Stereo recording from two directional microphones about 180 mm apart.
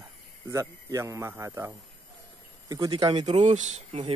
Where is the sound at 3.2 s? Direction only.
40° right (ahead or behind).